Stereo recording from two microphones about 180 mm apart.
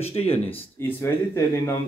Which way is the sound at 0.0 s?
35° left (ahead or behind).